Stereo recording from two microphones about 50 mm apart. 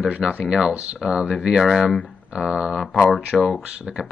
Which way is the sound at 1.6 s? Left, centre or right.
Centre.